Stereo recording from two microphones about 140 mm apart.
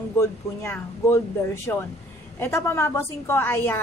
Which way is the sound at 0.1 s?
20° left (ahead or behind).